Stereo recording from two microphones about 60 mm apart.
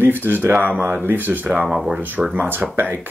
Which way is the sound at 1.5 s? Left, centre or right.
Centre.